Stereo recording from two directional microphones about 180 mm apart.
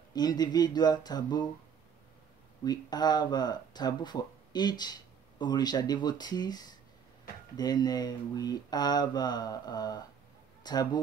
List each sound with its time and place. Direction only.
0.1 s speech: 20° left (ahead or behind)
2.6 s speech: 20° left (ahead or behind)